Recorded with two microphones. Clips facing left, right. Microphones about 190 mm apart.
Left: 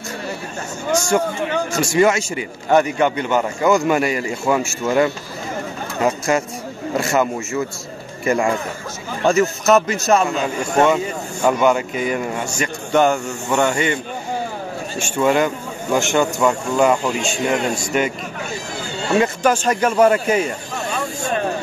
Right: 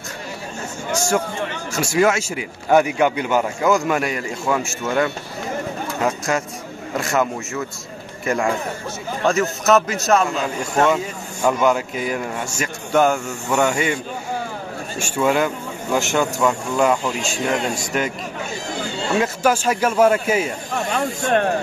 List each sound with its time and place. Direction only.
1.8 s a man's voice: 5° right (ahead or behind)
15.0 s a man's voice: 5° right (ahead or behind)
19.1 s a man's voice: 5° right (ahead or behind)
20.7 s a sound: 65° right (ahead or behind)